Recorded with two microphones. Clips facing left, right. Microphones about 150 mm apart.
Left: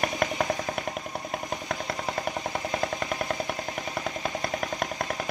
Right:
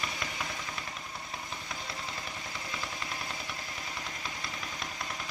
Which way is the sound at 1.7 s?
60° left (ahead or behind).